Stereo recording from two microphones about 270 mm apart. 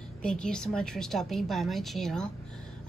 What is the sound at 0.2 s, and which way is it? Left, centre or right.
A woman's voice, centre.